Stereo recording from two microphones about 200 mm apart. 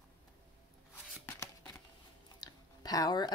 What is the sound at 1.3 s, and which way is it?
Shuffling cards, 10° left (ahead or behind).